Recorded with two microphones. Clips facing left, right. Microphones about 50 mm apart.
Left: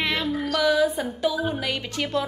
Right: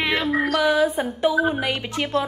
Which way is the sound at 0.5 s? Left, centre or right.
Right.